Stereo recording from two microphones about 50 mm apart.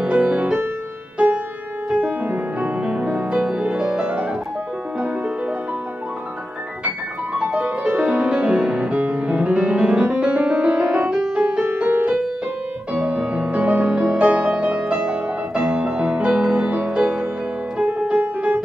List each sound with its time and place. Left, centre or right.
0.0 s music: right
7.6 s music: right
11.6 s music: right
13.0 s music: right